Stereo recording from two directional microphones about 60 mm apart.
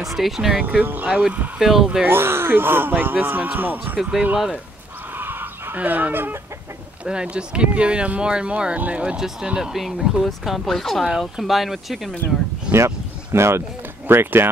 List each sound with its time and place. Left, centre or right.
0.0 s speech: centre
0.7 s speech: right
1.0 s speech: centre
2.0 s speech: right
5.1 s chicken: right
5.8 s speech: right
7.1 s speech: centre
12.7 s speech: right